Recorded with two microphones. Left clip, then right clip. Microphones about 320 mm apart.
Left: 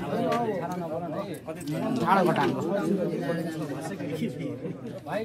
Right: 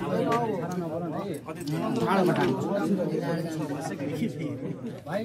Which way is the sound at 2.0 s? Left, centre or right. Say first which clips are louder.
Left 3 dB; left.